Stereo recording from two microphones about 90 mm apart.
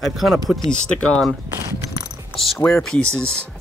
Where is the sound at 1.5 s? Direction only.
40° right (ahead or behind).